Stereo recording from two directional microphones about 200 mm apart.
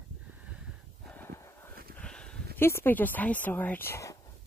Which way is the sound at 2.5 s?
10° left (ahead or behind).